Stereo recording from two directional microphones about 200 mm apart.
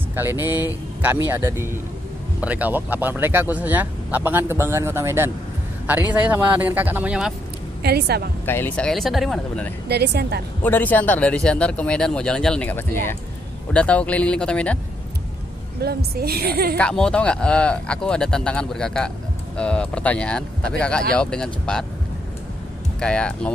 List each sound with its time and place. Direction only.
0.1 s speech: 10° right (ahead or behind)
7.8 s a woman's voice: 55° right (ahead or behind)
8.5 s speech: 10° left (ahead or behind)
9.8 s a woman's voice: 55° right (ahead or behind)
10.6 s speech: 10° left (ahead or behind)
15.8 s a woman's voice: 50° right (ahead or behind)
16.7 s speech: 5° left (ahead or behind)
22.9 s speech: 5° left (ahead or behind)